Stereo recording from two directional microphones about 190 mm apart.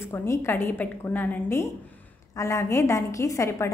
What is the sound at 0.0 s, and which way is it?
A woman's voice, 15° left (ahead or behind).